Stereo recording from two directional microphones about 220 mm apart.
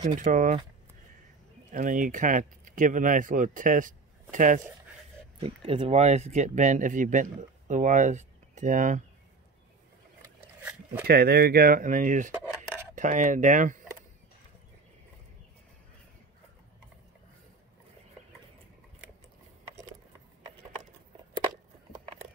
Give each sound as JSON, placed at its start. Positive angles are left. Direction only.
{"t": 0.1, "sound": "speech", "side_deg": -35}
{"t": 1.7, "sound": "speech", "side_deg": -35}
{"t": 5.4, "sound": "speech", "side_deg": -25}
{"t": 10.6, "sound": "a sound", "side_deg": -5}
{"t": 11.1, "sound": "speech", "side_deg": -45}